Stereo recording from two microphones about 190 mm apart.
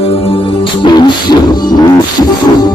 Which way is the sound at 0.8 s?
20° left (ahead or behind).